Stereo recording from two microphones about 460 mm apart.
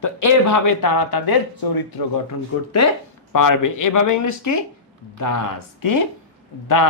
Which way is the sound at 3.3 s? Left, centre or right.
Left.